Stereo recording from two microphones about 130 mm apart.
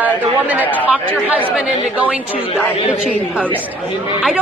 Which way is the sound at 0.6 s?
15° left (ahead or behind).